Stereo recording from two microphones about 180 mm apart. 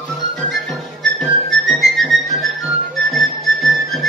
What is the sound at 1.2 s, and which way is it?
Music, centre (ahead or behind).